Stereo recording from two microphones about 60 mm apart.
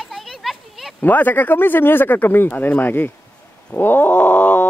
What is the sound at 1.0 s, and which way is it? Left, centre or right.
Speech, left.